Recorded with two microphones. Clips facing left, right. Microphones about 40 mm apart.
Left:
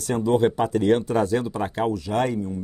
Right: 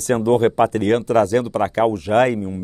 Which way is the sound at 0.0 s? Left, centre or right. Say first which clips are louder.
Right 4 dB; right.